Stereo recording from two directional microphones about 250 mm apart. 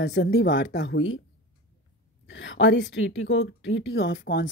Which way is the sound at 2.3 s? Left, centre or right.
Left.